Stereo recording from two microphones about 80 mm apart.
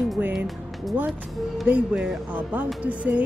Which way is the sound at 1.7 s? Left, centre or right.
Centre.